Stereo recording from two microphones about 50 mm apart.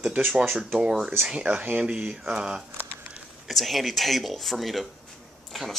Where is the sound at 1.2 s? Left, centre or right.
Centre.